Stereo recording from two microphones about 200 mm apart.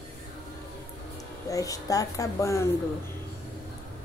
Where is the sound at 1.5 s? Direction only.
15° left (ahead or behind).